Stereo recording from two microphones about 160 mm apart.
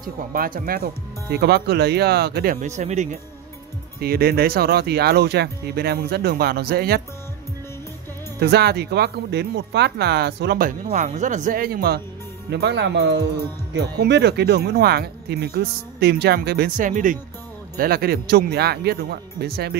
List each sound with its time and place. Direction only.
0.3 s speech: 60° right (ahead or behind)
1.3 s speech: 90° right; by 3.2 s 45° right (ahead or behind)
4.0 s speech: 75° right (ahead or behind)
8.4 s speech: 90° right
10.8 s speech: 60° right (ahead or behind)
12.4 s speech: 90° right; by 17.2 s 55° right (ahead or behind)
17.7 s speech: 70° right (ahead or behind)